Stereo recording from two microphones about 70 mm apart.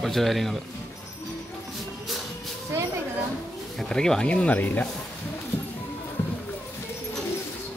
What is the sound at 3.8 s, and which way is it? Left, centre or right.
Speech, centre.